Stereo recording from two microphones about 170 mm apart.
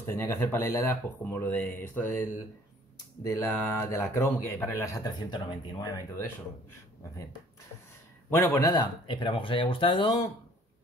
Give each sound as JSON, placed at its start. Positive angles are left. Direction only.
{"t": 0.0, "sound": "a man's voice", "side_deg": 15}
{"t": 3.3, "sound": "a man's voice", "side_deg": 15}
{"t": 8.3, "sound": "speech", "side_deg": 15}